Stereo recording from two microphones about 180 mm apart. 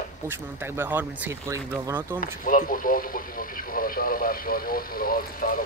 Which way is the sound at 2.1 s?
50° left (ahead or behind).